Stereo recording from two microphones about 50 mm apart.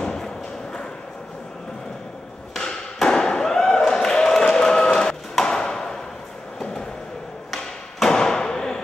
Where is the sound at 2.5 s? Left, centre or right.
Centre.